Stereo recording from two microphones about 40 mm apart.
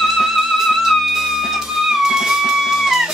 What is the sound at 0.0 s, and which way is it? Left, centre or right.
Music, centre.